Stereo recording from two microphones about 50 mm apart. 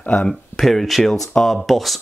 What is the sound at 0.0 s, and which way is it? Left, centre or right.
Speech, left.